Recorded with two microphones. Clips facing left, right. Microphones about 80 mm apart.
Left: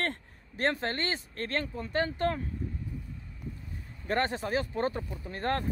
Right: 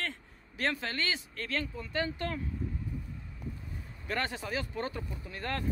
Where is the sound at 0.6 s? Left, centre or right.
Left.